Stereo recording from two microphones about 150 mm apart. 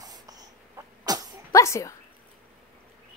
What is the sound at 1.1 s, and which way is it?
Throat clearing, 25° right (ahead or behind).